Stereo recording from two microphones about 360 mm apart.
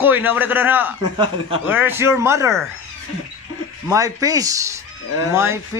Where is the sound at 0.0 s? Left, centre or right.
Centre.